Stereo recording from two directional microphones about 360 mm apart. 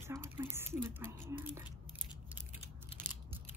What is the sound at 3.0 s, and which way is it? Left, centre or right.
Biting, right.